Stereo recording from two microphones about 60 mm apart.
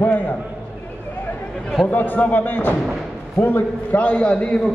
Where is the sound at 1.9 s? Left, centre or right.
Left.